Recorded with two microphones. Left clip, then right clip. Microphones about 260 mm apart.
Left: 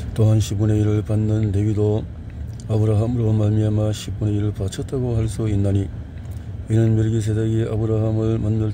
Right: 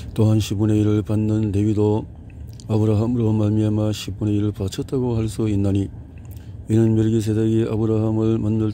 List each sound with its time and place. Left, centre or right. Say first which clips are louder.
0.1 s a man's voice: right 2 dB; centre